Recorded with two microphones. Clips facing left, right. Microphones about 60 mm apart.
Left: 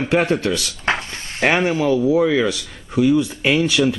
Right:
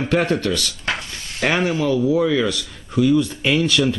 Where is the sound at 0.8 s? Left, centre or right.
Left; by 3.9 s centre.